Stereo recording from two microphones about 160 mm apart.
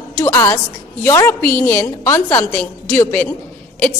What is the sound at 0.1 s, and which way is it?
A woman's voice, 15° left (ahead or behind).